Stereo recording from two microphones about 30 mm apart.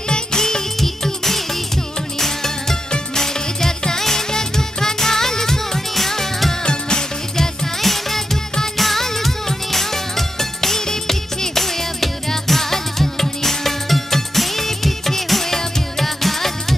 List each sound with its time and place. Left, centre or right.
0.1 s music: left
0.7 s music: centre
6.6 s music: left
7.8 s music: centre